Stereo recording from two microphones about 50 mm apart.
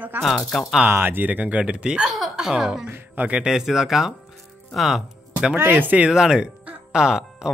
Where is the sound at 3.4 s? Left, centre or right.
Centre.